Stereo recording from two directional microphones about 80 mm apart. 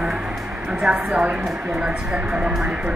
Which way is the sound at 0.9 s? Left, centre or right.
Centre.